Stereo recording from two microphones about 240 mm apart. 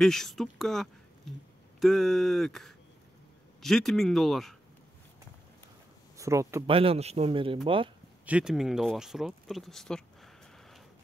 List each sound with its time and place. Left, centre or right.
0.0 s speech: centre
6.1 s speech: centre
6.7 s a man's voice: right
8.3 s speech: centre